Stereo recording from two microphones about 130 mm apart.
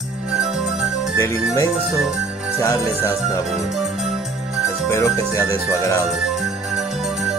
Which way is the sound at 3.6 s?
Centre (ahead or behind).